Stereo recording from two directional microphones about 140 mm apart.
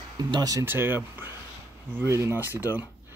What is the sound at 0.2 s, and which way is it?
Speech, 30° right (ahead or behind).